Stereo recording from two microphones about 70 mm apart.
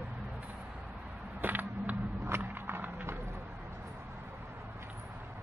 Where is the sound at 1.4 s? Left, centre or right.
Right.